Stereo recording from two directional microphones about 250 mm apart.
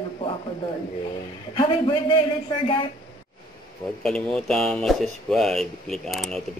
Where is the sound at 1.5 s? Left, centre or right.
Centre.